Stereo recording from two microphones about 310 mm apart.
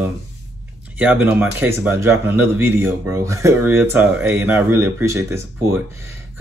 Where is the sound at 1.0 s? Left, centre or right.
Centre.